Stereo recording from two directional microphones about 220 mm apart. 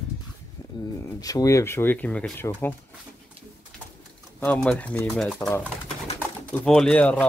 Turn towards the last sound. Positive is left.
turn(degrees=5)  # may be behind; listen again after turning